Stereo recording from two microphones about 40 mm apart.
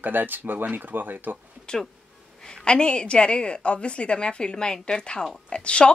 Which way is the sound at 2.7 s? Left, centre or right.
Left.